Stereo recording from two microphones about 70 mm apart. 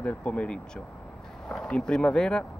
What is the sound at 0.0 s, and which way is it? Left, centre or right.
Speech, centre.